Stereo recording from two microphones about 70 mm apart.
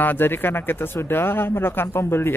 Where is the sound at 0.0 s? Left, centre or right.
Left.